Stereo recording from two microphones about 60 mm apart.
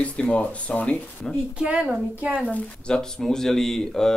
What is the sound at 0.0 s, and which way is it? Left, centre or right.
Speech, left.